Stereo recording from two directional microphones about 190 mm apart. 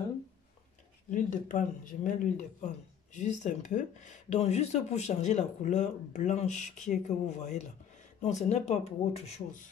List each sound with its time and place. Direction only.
1.1 s speech: 40° left (ahead or behind)